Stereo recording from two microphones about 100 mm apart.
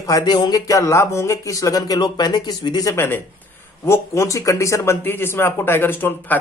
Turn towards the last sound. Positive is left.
turn(degrees=20)  # may be behind; listen again after turning